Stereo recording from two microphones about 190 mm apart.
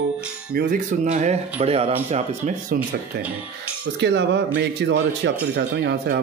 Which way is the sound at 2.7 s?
55° right (ahead or behind).